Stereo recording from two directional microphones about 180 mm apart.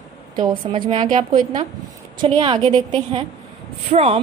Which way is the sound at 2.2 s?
30° right (ahead or behind).